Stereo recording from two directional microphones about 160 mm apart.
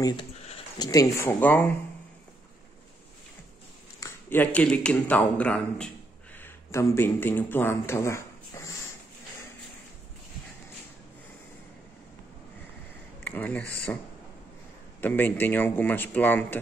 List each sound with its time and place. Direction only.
0.0 s a sound: 30° left (ahead or behind)
0.8 s speech: 20° left (ahead or behind)
1.4 s speech: 10° left (ahead or behind)
4.0 s speech: 10° left (ahead or behind)
13.2 s speech: 10° left (ahead or behind)
15.0 s speech: 10° left (ahead or behind)